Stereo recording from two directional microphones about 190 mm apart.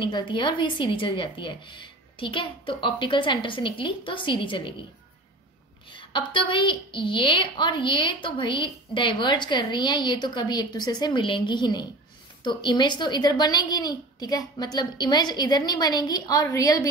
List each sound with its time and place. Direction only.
0.0 s a woman's voice: 25° left (ahead or behind)
5.9 s a woman's voice: 25° left (ahead or behind)